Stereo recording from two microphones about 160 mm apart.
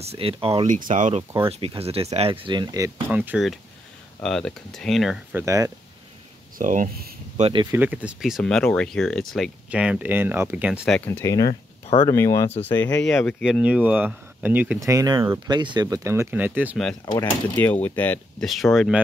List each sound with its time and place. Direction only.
0.0 s speech: 35° right (ahead or behind)
0.7 s speech: 55° right (ahead or behind)
1.7 s speech: 35° right (ahead or behind)
3.1 s speech: 10° right (ahead or behind)
5.3 s speech: 20° right (ahead or behind)
6.6 s speech: 55° right (ahead or behind)
7.3 s speech: 40° right (ahead or behind)
7.7 s speech: 10° right (ahead or behind)
11.0 s speech: 15° left (ahead or behind)
13.5 s speech: 10° right (ahead or behind)
14.8 s speech: 20° right (ahead or behind)
17.2 s speech: 10° left (ahead or behind)